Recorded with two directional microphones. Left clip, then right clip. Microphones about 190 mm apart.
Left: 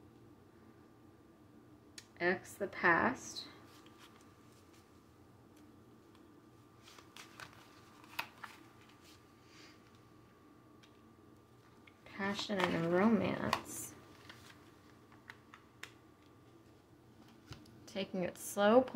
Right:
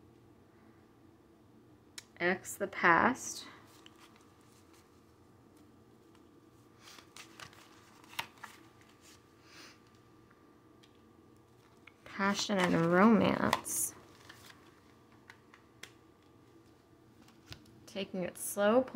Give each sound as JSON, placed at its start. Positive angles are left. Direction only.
{"t": 2.0, "sound": "speech", "side_deg": -15}
{"t": 11.8, "sound": "speech", "side_deg": -30}
{"t": 17.8, "sound": "a woman's voice", "side_deg": -5}